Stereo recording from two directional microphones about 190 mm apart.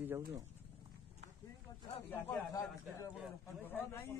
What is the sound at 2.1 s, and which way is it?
A man's voice, 15° left (ahead or behind).